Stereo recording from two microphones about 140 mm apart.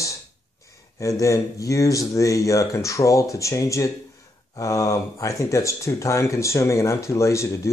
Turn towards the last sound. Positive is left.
turn(degrees=20)  # may be behind; listen again after turning